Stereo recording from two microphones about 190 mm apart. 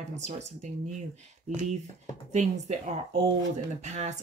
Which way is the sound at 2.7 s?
35° right (ahead or behind).